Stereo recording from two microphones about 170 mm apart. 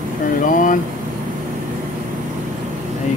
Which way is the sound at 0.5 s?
50° left (ahead or behind).